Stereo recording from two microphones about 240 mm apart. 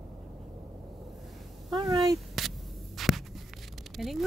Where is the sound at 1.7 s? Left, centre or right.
Centre.